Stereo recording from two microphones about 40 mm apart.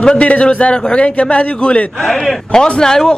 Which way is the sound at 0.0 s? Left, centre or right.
Left.